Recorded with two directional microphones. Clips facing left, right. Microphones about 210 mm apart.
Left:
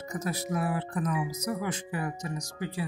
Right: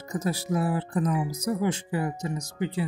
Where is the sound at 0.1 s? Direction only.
30° right (ahead or behind).